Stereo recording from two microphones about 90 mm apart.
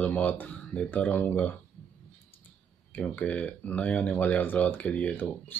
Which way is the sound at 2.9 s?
20° left (ahead or behind).